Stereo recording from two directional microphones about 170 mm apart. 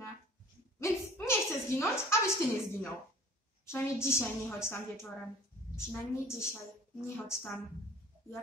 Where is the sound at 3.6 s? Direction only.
15° left (ahead or behind).